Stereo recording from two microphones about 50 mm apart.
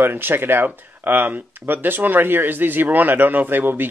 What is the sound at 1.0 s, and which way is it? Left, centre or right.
Speech, right.